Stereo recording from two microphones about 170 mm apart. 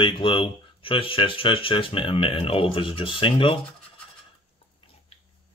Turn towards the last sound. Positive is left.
turn(degrees=30)  # may be behind; listen again after turning